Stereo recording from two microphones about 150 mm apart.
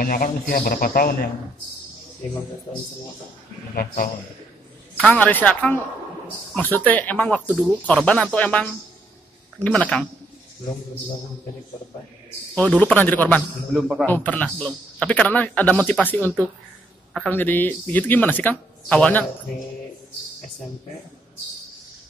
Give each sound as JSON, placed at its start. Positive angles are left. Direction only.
{"t": 0.0, "sound": "a man's voice", "side_deg": 75}
{"t": 2.7, "sound": "speech", "side_deg": 35}
{"t": 3.7, "sound": "a man's voice", "side_deg": 75}
{"t": 4.9, "sound": "a man's voice", "side_deg": 10}
{"t": 12.5, "sound": "a man's voice", "side_deg": 10}
{"t": 17.3, "sound": "a man's voice", "side_deg": 15}